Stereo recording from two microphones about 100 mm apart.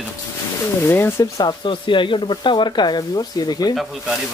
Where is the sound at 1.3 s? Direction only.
50° left (ahead or behind).